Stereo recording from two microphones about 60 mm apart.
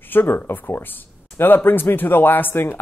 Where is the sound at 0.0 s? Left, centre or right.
Left.